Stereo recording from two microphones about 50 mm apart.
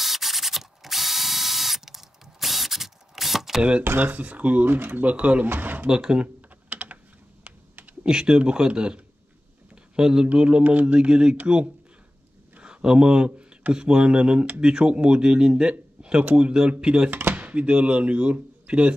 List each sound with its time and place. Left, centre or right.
0.0 s ratchet: centre
4.0 s speech: right
4.6 s speech: right
5.0 s speech: right
5.5 s speech: right
5.9 s speech: centre
6.2 s typing: right
8.0 s speech: centre
16.0 s a sound: right
16.3 s speech: right
17.1 s a sound: right
17.4 s speech: right